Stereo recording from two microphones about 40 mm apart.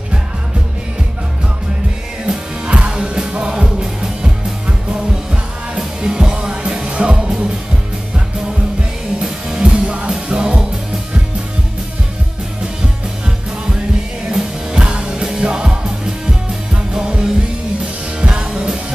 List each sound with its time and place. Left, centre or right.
2.2 s music: right
5.8 s music: centre
9.2 s music: centre
9.8 s music: right
14.3 s music: centre
16.9 s music: centre